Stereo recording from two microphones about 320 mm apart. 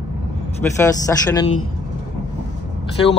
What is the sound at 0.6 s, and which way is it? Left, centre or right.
Speech, centre.